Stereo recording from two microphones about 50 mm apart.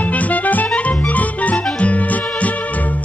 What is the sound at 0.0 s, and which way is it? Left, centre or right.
Music, left.